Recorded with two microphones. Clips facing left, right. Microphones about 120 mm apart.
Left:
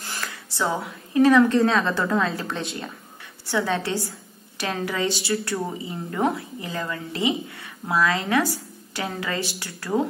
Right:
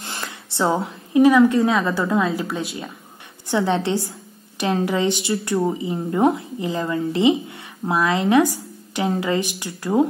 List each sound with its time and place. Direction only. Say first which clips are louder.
0.0 s a woman's voice: right 2 dB; 25° right (ahead or behind); by 2.9 s 5° right (ahead or behind)
3.4 s a woman's voice: right 4 dB; 20° right (ahead or behind)